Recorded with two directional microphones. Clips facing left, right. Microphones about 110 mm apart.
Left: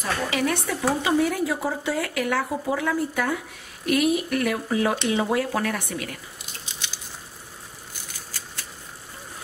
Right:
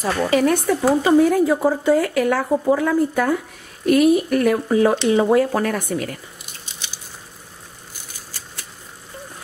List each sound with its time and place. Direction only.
0.0 s speech: 40° right (ahead or behind)